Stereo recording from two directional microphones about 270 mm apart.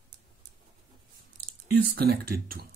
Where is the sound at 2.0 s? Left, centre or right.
Right.